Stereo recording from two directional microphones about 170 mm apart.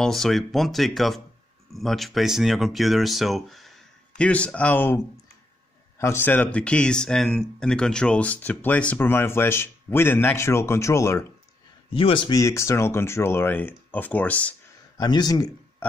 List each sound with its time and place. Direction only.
0.0 s speech: centre (ahead or behind); by 11.2 s 15° left (ahead or behind)
11.9 s speech: 30° left (ahead or behind); by 14.5 s 10° left (ahead or behind)
15.0 s a man's voice: 25° left (ahead or behind)